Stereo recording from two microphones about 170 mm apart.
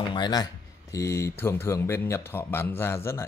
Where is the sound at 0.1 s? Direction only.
25° left (ahead or behind).